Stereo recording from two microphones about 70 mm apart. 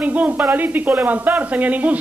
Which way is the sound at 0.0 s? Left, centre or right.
Right.